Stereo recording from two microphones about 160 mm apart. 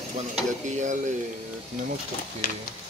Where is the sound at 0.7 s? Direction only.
50° right (ahead or behind).